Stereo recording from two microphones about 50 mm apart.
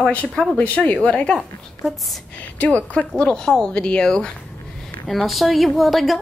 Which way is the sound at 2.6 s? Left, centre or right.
Left.